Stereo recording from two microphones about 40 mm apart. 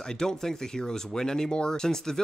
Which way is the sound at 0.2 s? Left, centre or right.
Centre.